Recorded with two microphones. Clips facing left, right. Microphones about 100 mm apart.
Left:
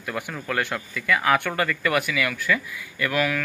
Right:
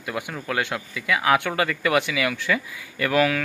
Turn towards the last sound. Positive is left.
turn(degrees=-25)  # may be behind; listen again after turning